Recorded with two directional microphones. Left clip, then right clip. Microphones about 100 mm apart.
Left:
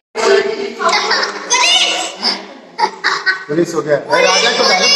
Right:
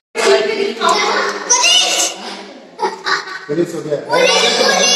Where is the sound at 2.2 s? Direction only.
25° left (ahead or behind).